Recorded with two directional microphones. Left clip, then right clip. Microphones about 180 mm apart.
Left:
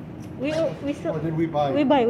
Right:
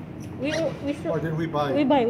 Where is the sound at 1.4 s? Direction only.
50° left (ahead or behind).